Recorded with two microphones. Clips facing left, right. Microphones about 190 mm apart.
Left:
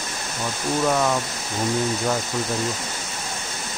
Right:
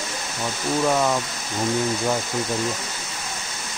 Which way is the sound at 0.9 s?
5° right (ahead or behind).